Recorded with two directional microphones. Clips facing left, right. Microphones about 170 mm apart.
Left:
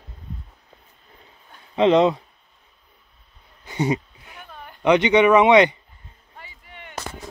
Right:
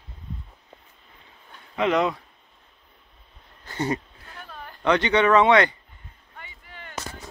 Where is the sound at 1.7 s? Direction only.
25° left (ahead or behind).